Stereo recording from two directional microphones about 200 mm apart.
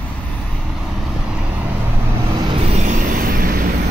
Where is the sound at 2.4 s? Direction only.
35° right (ahead or behind).